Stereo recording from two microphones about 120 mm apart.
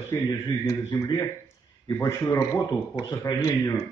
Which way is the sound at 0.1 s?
25° left (ahead or behind).